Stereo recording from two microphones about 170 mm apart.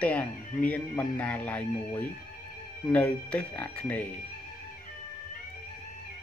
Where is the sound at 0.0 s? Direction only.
10° left (ahead or behind).